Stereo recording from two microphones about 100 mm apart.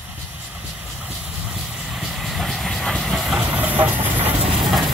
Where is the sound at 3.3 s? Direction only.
15° right (ahead or behind).